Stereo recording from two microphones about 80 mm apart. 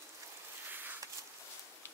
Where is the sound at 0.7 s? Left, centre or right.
Right.